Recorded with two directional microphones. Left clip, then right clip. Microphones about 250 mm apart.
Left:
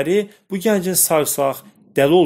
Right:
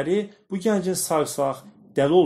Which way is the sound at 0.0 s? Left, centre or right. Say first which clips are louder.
Left 6 dB; left.